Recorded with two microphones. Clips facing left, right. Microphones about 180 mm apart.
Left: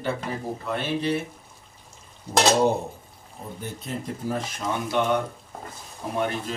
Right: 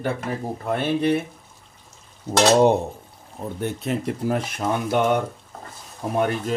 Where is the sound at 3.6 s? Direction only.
70° right (ahead or behind).